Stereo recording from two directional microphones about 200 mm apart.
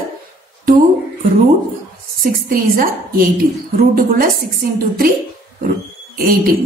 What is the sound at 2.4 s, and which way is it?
A woman's voice, 45° right (ahead or behind).